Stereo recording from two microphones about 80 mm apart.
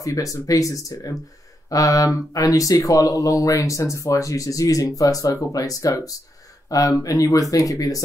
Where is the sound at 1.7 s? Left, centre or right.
Left.